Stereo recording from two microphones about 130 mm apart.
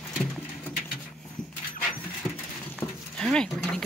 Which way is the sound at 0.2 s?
5° left (ahead or behind).